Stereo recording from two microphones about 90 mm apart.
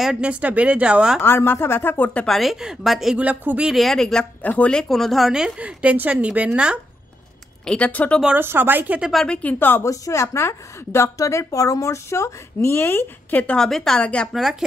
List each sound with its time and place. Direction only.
0.0 s a woman's voice: 10° right (ahead or behind)
1.2 s speech: 25° left (ahead or behind)
2.2 s speech: centre (ahead or behind)
3.2 s a woman's voice: 15° right (ahead or behind)
3.7 s speech: 5° left (ahead or behind)
4.4 s a woman's voice: 15° left (ahead or behind); by 6.8 s 10° right (ahead or behind)
7.6 s speech: 15° left (ahead or behind)
8.4 s speech: 25° right (ahead or behind)
9.1 s speech: 10° left (ahead or behind)
9.8 s a woman's voice: 35° left (ahead or behind); by 13.7 s 15° left (ahead or behind)
13.7 s speech: 5° left (ahead or behind)
14.3 s speech: 5° right (ahead or behind)